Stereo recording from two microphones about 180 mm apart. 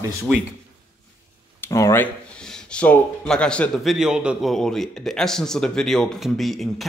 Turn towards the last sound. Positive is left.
turn(degrees=0)  # may be behind; listen again after turning